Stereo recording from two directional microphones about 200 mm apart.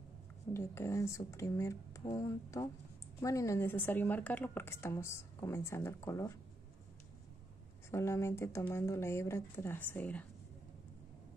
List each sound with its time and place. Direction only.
0.5 s speech: 15° left (ahead or behind)
7.9 s speech: 15° left (ahead or behind)